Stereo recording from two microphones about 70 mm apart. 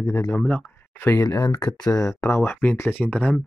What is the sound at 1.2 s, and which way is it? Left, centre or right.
Speech, left.